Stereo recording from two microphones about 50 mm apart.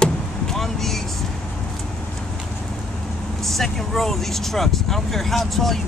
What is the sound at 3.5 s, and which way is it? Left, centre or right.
Speech, centre.